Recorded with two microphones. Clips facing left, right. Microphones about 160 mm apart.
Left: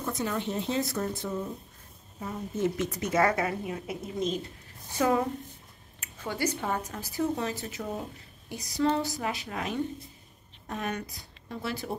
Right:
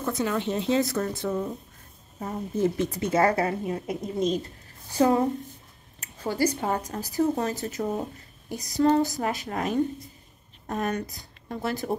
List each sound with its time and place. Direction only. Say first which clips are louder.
0.0 s speech: right 4 dB; 90° right
2.1 s a woman's voice: right 4 dB; 40° right (ahead or behind)